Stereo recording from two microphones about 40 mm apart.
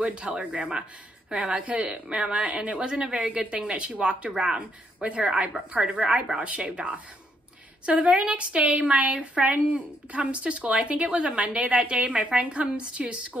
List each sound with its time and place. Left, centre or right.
0.0 s a woman's voice: right
2.4 s a woman's voice: right